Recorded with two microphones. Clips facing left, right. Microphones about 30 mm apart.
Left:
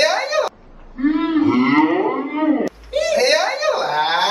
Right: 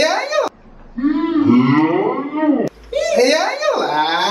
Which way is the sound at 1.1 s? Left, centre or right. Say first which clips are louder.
Right 2 dB; left.